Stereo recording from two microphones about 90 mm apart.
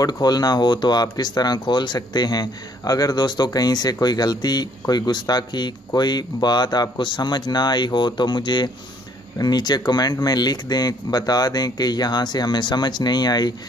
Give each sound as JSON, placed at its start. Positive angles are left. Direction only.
{"t": 0.0, "sound": "speech", "side_deg": 50}